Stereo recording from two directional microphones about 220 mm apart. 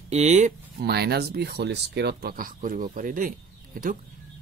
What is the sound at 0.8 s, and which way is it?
Speech, 45° right (ahead or behind).